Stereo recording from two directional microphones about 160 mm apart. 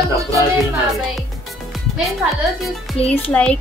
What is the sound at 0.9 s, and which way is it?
Music, centre (ahead or behind).